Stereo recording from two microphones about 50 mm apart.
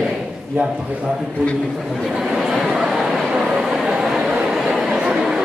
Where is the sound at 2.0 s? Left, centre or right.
Centre.